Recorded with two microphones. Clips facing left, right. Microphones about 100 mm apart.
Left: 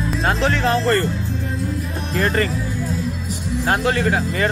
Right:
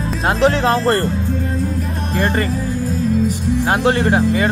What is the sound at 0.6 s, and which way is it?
Speech, 55° right (ahead or behind).